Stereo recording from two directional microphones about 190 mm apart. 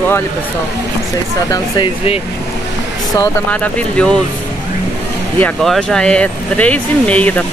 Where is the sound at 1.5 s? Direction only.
25° left (ahead or behind).